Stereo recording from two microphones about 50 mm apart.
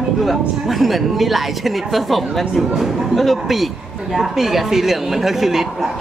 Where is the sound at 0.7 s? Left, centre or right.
Centre.